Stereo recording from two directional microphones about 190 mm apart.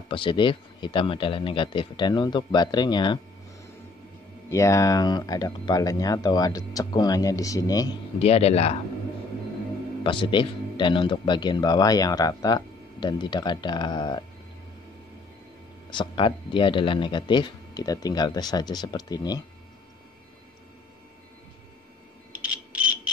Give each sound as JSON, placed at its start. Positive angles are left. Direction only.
{"t": 0.1, "sound": "speech", "side_deg": 25}
{"t": 4.5, "sound": "speech", "side_deg": 15}
{"t": 8.2, "sound": "speech", "side_deg": 30}
{"t": 10.0, "sound": "speech", "side_deg": 25}
{"t": 15.9, "sound": "speech", "side_deg": 25}
{"t": 22.3, "sound": "a sound", "side_deg": -5}